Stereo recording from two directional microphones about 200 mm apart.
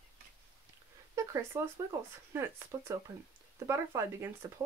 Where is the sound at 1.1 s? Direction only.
15° right (ahead or behind).